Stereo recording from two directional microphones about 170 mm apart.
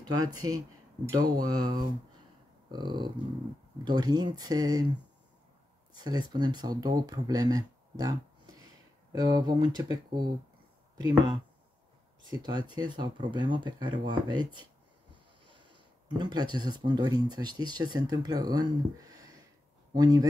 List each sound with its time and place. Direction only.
0.0 s speech: 20° right (ahead or behind)
5.9 s speech: 25° right (ahead or behind)
11.0 s speech: 25° right (ahead or behind)